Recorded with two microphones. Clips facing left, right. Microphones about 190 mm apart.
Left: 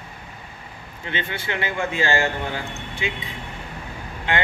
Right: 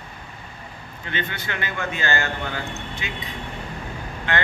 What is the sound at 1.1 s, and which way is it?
Speech, 25° left (ahead or behind).